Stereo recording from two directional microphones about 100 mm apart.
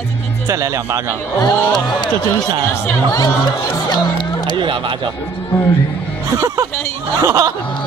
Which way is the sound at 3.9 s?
45° left (ahead or behind).